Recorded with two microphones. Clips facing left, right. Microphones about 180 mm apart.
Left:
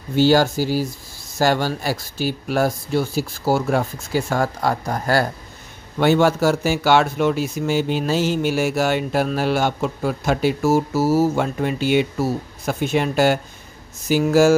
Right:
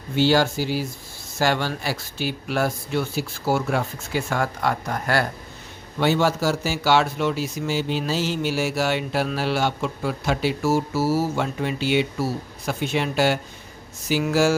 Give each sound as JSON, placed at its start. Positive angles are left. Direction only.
{"t": 0.1, "sound": "speech", "side_deg": 45}
{"t": 5.9, "sound": "speech", "side_deg": 55}